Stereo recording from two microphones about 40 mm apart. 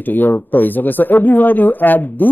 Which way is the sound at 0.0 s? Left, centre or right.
Left.